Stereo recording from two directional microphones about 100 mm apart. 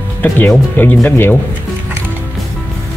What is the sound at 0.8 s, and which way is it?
Speech, 20° left (ahead or behind).